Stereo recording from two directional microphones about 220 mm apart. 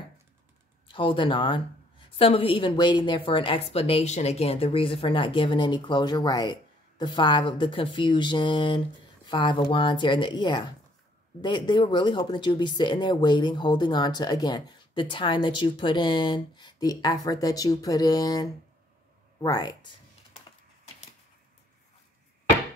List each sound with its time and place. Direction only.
0.8 s speech: 20° left (ahead or behind)